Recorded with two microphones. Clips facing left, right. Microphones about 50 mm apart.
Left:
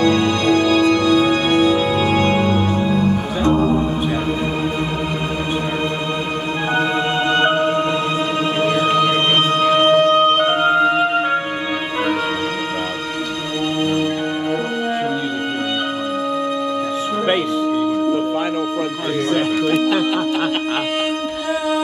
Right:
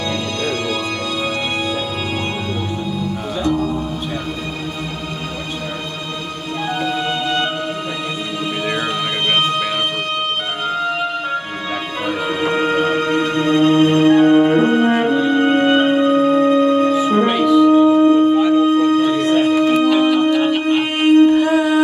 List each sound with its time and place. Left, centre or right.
0.0 s music: left
2.2 s music: left
9.5 s music: left
10.6 s music: left
13.5 s music: right
17.4 s music: right
20.1 s music: left
21.0 s a sound: right